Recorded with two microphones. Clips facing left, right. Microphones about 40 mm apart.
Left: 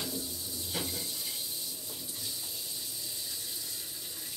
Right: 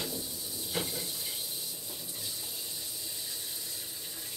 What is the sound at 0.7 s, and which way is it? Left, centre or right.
Water tap, centre.